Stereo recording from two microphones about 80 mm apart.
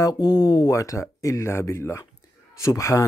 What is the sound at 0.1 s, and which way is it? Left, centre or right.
Speech, left.